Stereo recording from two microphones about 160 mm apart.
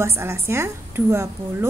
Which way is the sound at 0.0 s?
15° right (ahead or behind).